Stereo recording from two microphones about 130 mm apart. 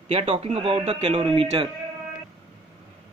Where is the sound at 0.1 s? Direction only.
50° right (ahead or behind).